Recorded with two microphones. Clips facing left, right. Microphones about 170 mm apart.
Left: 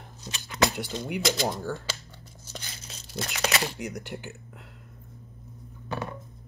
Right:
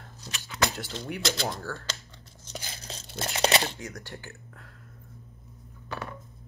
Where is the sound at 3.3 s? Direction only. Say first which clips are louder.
Right 4 dB; 30° right (ahead or behind).